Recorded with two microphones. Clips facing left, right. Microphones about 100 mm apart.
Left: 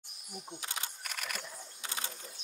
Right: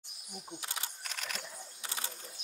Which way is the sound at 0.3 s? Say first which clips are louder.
Left 1 dB; centre (ahead or behind).